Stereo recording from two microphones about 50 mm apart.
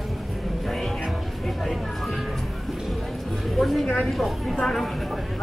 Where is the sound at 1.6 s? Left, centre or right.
Centre.